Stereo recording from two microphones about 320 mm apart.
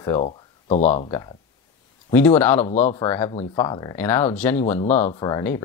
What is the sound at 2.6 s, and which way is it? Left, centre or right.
Speech, left.